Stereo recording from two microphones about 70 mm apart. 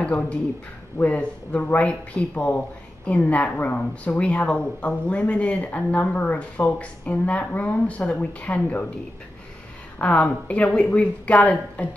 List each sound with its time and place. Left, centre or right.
0.0 s speech: centre
9.9 s speech: left